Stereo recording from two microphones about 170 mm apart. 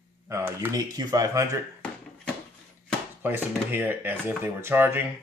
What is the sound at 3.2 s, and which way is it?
Speech, 10° right (ahead or behind).